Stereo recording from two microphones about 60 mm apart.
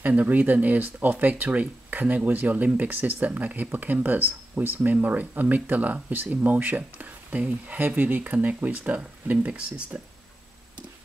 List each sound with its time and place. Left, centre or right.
0.0 s speech: right